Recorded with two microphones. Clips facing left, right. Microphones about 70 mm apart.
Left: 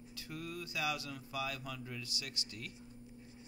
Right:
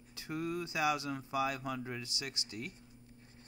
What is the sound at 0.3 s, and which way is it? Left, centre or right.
Speech, right.